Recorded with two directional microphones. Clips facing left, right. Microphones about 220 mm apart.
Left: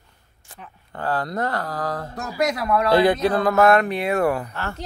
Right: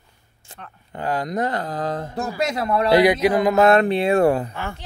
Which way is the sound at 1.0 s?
15° right (ahead or behind).